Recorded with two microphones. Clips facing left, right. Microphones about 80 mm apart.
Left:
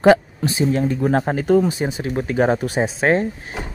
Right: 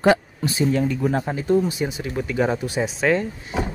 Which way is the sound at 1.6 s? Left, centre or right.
Left.